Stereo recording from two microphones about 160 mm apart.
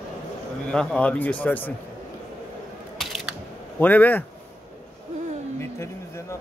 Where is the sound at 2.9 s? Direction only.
Centre (ahead or behind).